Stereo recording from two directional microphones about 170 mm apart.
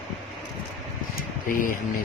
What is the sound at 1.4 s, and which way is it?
Speech, 55° left (ahead or behind).